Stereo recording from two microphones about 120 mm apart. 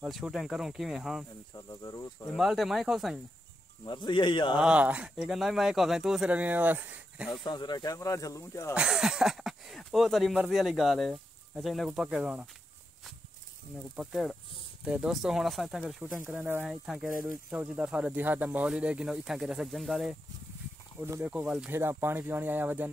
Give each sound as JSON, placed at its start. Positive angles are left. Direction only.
{"t": 0.0, "sound": "speech", "side_deg": -5}
{"t": 1.5, "sound": "speech", "side_deg": 30}
{"t": 2.3, "sound": "speech", "side_deg": 0}
{"t": 3.8, "sound": "speech", "side_deg": 40}
{"t": 4.6, "sound": "speech", "side_deg": -10}
{"t": 7.4, "sound": "speech", "side_deg": 35}
{"t": 8.7, "sound": "speech", "side_deg": -5}
{"t": 13.9, "sound": "speech", "side_deg": 0}
{"t": 16.3, "sound": "speech", "side_deg": -15}
{"t": 16.6, "sound": "speech", "side_deg": -5}
{"t": 21.2, "sound": "speech", "side_deg": -10}
{"t": 21.7, "sound": "speech", "side_deg": -20}